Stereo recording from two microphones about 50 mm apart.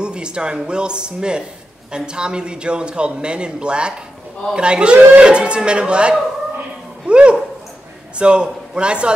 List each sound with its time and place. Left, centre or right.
0.0 s a man's voice: centre